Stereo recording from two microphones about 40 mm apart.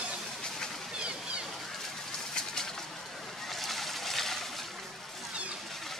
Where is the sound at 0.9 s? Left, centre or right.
Right.